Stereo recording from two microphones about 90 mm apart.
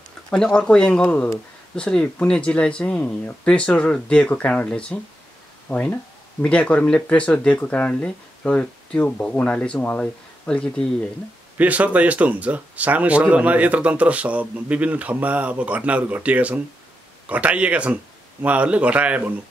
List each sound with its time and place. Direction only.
0.3 s speech: 10° left (ahead or behind)
11.5 s speech: 15° right (ahead or behind)